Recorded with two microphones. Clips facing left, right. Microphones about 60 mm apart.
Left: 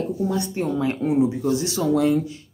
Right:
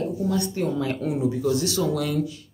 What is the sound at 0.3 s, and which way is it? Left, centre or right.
Speech, left.